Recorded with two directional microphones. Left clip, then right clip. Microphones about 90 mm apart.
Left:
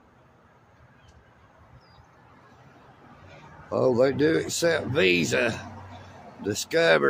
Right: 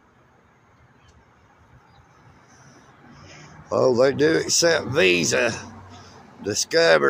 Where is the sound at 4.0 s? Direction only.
20° left (ahead or behind).